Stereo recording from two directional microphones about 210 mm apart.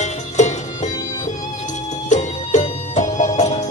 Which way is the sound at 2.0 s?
35° left (ahead or behind).